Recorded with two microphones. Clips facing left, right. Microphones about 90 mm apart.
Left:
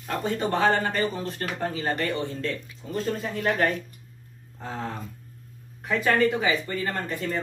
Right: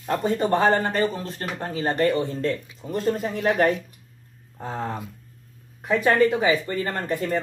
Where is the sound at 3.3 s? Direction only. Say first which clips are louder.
Right 2 dB; 15° right (ahead or behind).